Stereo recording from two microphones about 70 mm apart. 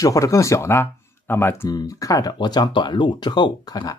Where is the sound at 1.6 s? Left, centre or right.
Left.